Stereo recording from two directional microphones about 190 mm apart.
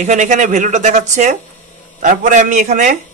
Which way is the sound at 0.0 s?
40° right (ahead or behind).